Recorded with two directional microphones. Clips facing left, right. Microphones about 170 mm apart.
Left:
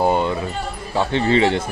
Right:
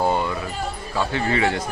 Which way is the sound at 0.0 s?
20° left (ahead or behind).